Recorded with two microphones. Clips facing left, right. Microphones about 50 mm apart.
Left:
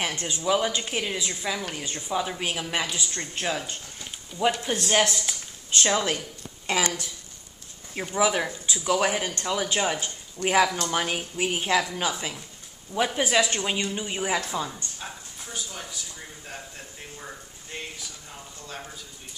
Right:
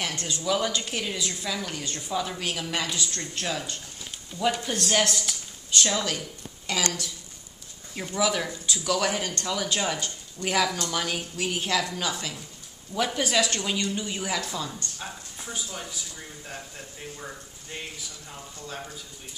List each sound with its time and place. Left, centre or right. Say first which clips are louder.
0.0 s speech: left 2 dB; left
5.2 s a sound: even; left
6.7 s speech: left 3 dB; left
15.5 s speech: even; centre